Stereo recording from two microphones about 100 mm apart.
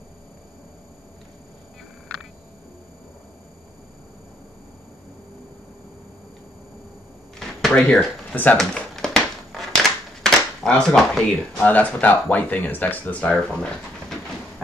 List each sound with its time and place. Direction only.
7.3 s drawer open or close: 5° left (ahead or behind)
8.5 s a sound: 5° left (ahead or behind)
11.6 s speech: 15° left (ahead or behind)